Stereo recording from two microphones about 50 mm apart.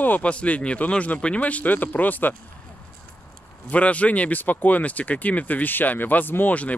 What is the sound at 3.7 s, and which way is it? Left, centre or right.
Speech, left.